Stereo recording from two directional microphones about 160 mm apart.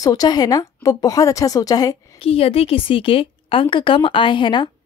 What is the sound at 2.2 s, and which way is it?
A woman's voice, 35° left (ahead or behind).